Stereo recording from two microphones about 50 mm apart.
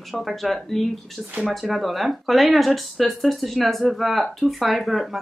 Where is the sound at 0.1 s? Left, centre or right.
Centre.